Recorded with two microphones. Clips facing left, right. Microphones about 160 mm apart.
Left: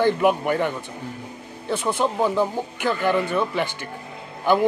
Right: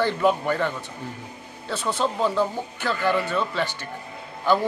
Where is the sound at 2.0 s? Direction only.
15° left (ahead or behind).